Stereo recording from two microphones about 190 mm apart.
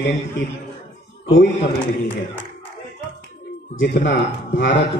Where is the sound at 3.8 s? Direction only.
65° left (ahead or behind).